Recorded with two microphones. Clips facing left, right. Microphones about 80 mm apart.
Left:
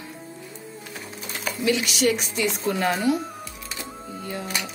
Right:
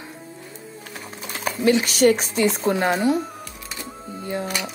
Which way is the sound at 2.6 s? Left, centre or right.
Right.